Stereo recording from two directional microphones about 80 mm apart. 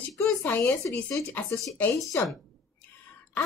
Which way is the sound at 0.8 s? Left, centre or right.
Left.